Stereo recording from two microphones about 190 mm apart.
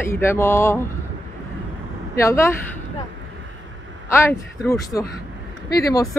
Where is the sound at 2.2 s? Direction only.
15° left (ahead or behind).